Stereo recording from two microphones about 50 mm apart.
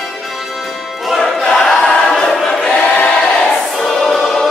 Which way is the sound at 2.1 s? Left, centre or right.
Centre.